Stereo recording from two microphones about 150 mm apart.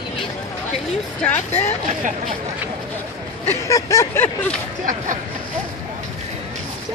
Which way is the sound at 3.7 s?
20° left (ahead or behind).